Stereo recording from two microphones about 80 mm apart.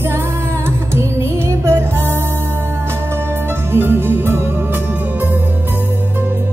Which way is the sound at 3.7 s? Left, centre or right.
Right.